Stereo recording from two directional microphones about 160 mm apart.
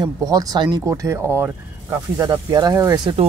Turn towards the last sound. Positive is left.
turn(degrees=-20)  # may be behind; listen again after turning